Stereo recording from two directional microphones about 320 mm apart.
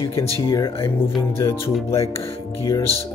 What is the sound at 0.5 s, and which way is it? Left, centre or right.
Speech, centre.